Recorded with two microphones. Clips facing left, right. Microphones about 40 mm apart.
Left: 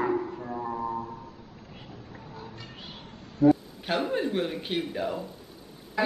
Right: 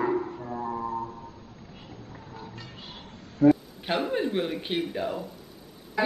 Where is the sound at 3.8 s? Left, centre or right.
Centre.